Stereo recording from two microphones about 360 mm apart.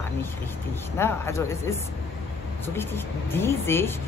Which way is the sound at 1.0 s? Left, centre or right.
Centre.